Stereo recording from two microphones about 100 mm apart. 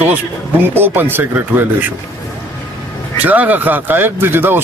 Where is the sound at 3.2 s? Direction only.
15° right (ahead or behind).